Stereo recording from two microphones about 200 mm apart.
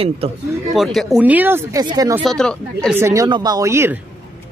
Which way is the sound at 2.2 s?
5° left (ahead or behind).